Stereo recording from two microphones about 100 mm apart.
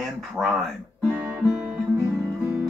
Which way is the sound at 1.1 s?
10° right (ahead or behind).